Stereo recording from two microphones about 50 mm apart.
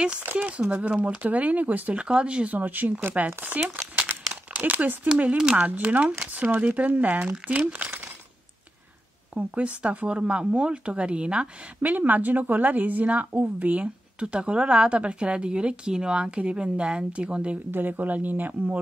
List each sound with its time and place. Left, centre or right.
0.4 s a woman's voice: right
2.0 s a woman's voice: centre; by 4.9 s right
5.4 s a woman's voice: right
5.7 s a woman's voice: right
9.3 s a woman's voice: right
11.8 s a woman's voice: right
17.6 s a woman's voice: right